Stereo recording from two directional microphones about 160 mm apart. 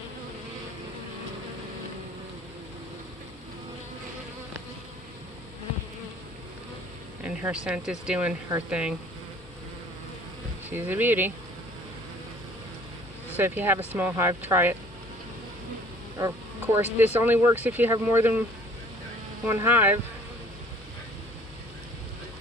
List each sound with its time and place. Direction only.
7.2 s speech: 5° right (ahead or behind)
10.7 s speech: 10° right (ahead or behind)
13.4 s speech: 10° right (ahead or behind)
16.2 s speech: 15° right (ahead or behind)
19.4 s speech: 15° right (ahead or behind)